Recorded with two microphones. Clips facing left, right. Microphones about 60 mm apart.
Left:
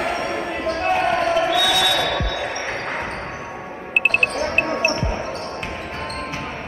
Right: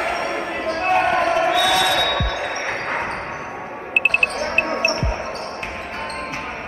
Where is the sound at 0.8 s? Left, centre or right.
Right.